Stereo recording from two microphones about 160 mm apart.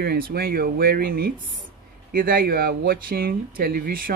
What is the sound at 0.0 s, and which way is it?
Speech, 70° right (ahead or behind).